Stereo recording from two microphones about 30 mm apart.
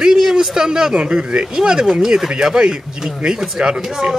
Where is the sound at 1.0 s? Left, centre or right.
Right.